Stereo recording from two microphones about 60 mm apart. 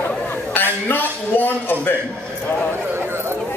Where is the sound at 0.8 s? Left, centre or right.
Left.